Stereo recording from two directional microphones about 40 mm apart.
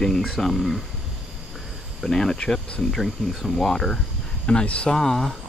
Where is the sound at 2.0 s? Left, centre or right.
Centre.